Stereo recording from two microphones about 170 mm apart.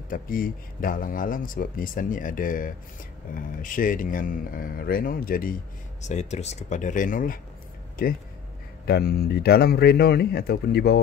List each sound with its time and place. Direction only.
0.1 s speech: 55° left (ahead or behind)